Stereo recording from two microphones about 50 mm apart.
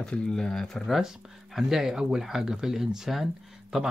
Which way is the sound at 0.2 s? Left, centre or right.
Centre.